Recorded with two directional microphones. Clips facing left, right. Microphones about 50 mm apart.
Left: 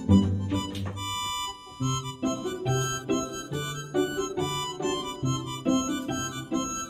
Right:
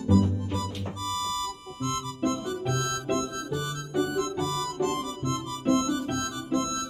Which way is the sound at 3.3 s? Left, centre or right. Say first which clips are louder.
Right 2 dB; left.